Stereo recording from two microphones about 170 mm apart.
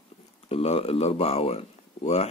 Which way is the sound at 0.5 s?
35° left (ahead or behind).